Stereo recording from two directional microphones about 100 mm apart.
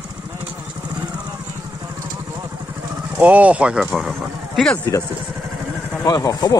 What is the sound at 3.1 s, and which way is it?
Speech, 15° right (ahead or behind).